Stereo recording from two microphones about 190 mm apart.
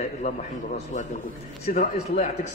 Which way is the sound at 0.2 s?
40° left (ahead or behind).